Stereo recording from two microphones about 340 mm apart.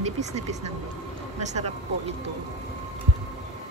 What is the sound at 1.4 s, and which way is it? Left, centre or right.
Speech, centre.